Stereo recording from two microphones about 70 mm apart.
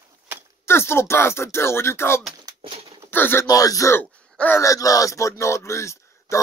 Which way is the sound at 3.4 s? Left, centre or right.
Left.